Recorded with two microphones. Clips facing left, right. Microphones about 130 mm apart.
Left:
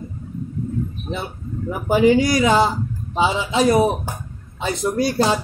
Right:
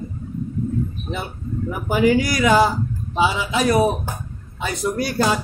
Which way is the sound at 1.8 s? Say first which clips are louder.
Left 3 dB; 25° left (ahead or behind).